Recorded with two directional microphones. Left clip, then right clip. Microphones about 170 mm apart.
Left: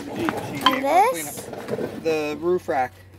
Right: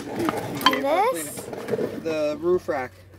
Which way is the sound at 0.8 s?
Centre (ahead or behind).